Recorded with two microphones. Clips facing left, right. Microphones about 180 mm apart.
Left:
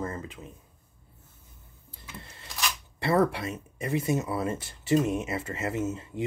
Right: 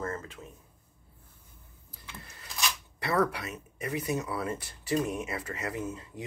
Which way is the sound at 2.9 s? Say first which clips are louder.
Left 4 dB; 25° left (ahead or behind).